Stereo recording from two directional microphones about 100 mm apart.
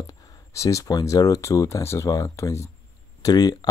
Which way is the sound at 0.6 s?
35° left (ahead or behind).